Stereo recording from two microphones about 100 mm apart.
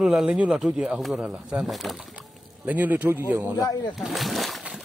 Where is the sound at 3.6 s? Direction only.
40° left (ahead or behind).